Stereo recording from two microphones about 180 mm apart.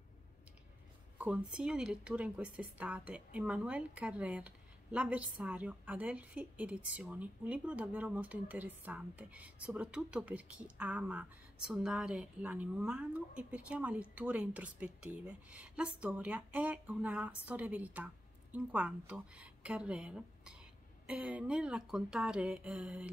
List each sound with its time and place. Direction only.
1.1 s a woman's voice: 5° right (ahead or behind)